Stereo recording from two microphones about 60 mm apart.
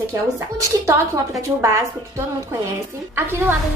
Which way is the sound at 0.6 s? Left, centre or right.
Right.